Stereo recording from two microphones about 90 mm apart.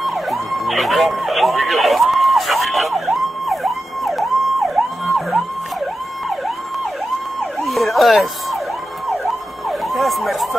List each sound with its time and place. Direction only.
0.0 s emergency vehicle: centre (ahead or behind)
7.6 s emergency vehicle: centre (ahead or behind)
9.7 s emergency vehicle: centre (ahead or behind)